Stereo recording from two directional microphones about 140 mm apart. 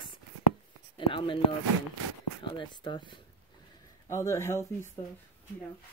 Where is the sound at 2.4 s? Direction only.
35° left (ahead or behind).